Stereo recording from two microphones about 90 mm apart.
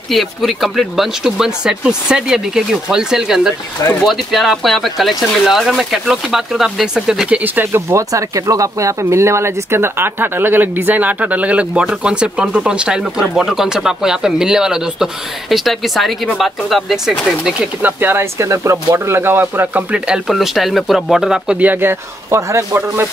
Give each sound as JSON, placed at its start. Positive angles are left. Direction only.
{"t": 0.1, "sound": "speech", "side_deg": 0}
{"t": 7.4, "sound": "speech", "side_deg": -25}
{"t": 17.8, "sound": "speech", "side_deg": -25}
{"t": 20.2, "sound": "speech", "side_deg": 0}
{"t": 22.3, "sound": "speech", "side_deg": -30}